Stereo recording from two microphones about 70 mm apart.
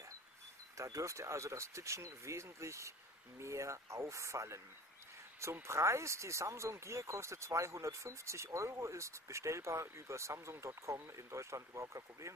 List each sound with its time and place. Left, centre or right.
0.7 s speech: right